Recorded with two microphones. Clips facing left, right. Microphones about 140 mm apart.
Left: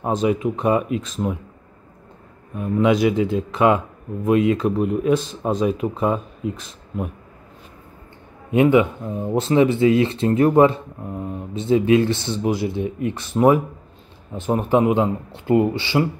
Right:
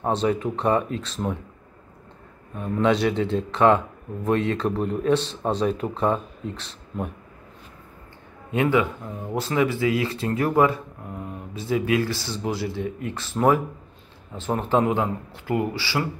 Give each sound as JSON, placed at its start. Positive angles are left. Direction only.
{"t": 0.2, "sound": "speech", "side_deg": 10}
{"t": 2.5, "sound": "speech", "side_deg": 10}
{"t": 8.5, "sound": "speech", "side_deg": 20}